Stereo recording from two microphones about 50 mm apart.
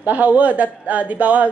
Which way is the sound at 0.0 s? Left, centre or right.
Right.